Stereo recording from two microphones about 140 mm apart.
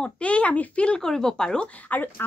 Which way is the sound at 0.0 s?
10° left (ahead or behind).